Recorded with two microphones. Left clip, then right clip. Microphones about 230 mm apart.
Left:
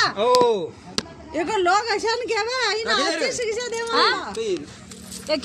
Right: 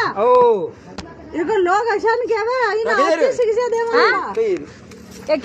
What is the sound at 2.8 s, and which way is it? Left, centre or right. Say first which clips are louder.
Speech: right 6 dB; left.